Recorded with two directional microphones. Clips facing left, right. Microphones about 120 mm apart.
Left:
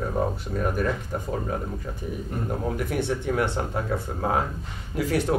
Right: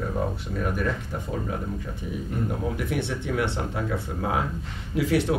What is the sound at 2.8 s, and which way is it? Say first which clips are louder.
Speech: left 2 dB; 40° left (ahead or behind).